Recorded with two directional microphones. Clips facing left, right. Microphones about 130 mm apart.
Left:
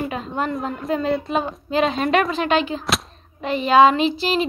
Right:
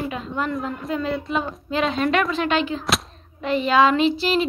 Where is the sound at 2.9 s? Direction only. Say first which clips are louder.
Even; centre (ahead or behind).